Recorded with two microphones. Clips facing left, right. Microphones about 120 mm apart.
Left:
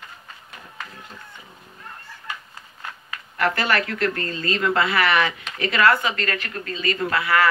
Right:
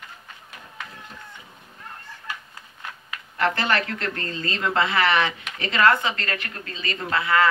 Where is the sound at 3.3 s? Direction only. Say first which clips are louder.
Left 1 dB; 25° right (ahead or behind).